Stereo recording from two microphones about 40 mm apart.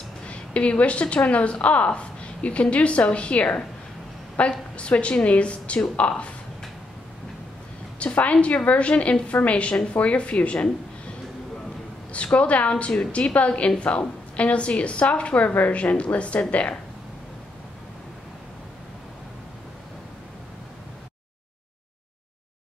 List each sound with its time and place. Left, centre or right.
0.3 s a woman's voice: left
8.0 s a woman's voice: left
12.1 s a woman's voice: left